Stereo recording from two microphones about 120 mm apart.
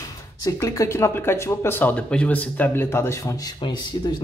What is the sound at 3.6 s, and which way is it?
Speech, 40° left (ahead or behind).